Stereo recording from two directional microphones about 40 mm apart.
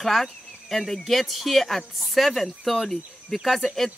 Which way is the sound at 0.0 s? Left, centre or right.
Centre.